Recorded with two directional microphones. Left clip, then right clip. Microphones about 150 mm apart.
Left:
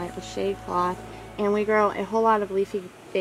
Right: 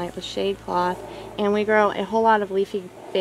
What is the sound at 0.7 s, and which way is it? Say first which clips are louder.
Speech: right 2 dB; 20° right (ahead or behind).